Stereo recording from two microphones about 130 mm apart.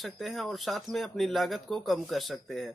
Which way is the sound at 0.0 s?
Centre (ahead or behind).